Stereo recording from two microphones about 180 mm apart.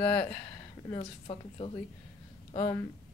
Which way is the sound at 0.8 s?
30° left (ahead or behind).